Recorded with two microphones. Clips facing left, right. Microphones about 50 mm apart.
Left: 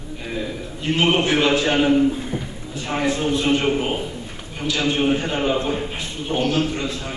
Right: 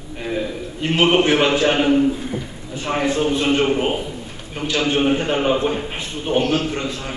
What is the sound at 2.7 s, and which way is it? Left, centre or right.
Speech, right.